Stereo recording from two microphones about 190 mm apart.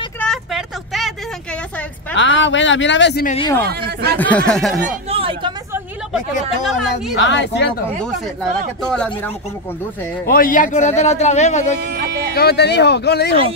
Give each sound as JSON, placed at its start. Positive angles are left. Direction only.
{"t": 0.2, "sound": "vehicle", "side_deg": 0}
{"t": 2.1, "sound": "speech", "side_deg": 75}
{"t": 3.6, "sound": "speech", "side_deg": -55}
{"t": 4.2, "sound": "speech", "side_deg": 5}
{"t": 4.8, "sound": "chatter", "side_deg": -30}
{"t": 7.2, "sound": "speech", "side_deg": 70}
{"t": 8.9, "sound": "speech", "side_deg": 5}
{"t": 10.2, "sound": "a man's voice", "side_deg": 50}
{"t": 11.9, "sound": "a sound", "side_deg": -55}
{"t": 12.4, "sound": "speech", "side_deg": 60}